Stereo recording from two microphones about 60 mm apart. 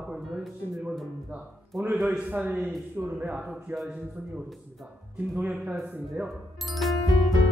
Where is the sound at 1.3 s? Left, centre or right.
Right.